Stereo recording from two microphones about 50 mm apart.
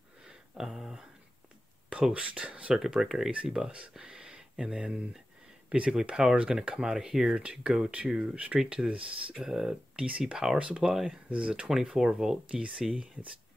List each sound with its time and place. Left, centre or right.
0.2 s a sound: centre
1.9 s speech: centre
2.7 s speech: centre
9.4 s speech: centre
10.0 s speech: right
10.3 s speech: centre